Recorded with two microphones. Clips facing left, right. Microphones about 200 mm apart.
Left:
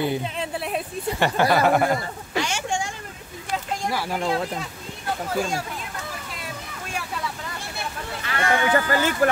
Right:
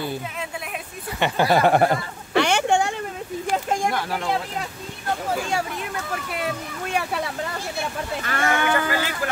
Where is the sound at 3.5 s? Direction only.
50° right (ahead or behind).